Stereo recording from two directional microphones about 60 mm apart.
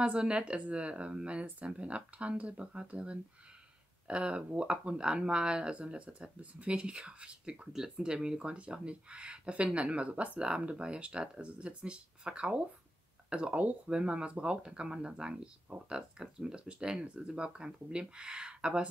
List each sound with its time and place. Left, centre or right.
0.0 s speech: centre